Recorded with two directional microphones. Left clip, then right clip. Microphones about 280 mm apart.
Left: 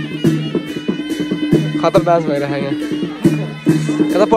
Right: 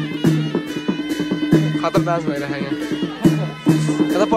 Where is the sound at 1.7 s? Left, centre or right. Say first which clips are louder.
Left 6 dB; centre.